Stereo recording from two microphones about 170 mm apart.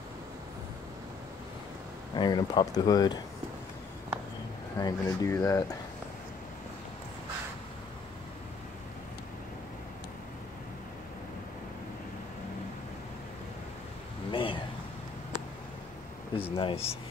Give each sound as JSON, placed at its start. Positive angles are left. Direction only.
{"t": 2.1, "sound": "speech", "side_deg": 25}
{"t": 4.7, "sound": "speech", "side_deg": 20}
{"t": 14.3, "sound": "a sound", "side_deg": 30}
{"t": 16.3, "sound": "speech", "side_deg": 30}